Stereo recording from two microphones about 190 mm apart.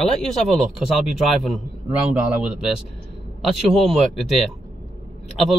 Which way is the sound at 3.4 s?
Centre (ahead or behind).